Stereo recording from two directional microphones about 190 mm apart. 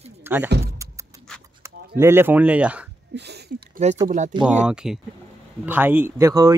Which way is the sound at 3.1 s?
65° right (ahead or behind).